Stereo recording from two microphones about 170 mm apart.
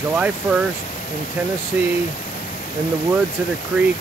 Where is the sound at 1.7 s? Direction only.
10° right (ahead or behind).